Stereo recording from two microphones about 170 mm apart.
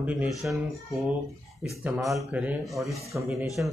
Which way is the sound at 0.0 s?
5° right (ahead or behind).